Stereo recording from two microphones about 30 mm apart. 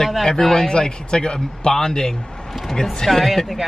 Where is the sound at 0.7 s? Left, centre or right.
Left.